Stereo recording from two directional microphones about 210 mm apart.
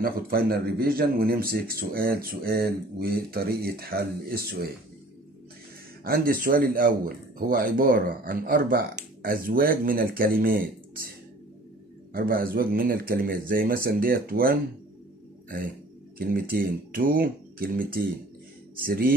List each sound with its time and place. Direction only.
0.0 s speech: 45° right (ahead or behind)
6.0 s speech: 45° right (ahead or behind)
12.1 s speech: 45° right (ahead or behind)
16.2 s speech: 45° right (ahead or behind)